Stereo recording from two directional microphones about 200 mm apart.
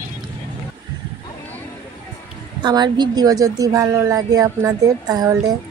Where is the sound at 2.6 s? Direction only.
20° right (ahead or behind).